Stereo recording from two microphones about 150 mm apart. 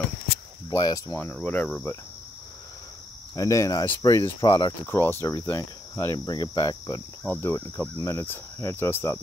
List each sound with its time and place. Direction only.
0.7 s cricket: 25° left (ahead or behind); by 2.0 s 10° left (ahead or behind)
3.3 s speech: 20° left (ahead or behind)
7.2 s cricket: 15° left (ahead or behind)